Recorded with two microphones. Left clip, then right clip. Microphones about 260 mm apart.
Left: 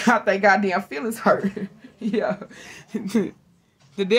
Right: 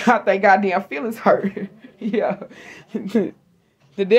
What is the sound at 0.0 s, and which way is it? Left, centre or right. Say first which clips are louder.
A woman's voice: right 2 dB; left.